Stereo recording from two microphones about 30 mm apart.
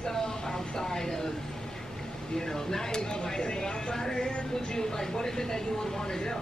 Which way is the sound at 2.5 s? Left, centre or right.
Centre.